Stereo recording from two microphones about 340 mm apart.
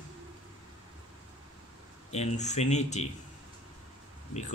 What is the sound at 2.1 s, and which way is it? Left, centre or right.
Speech, centre.